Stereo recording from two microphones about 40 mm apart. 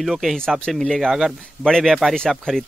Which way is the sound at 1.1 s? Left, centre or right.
Centre.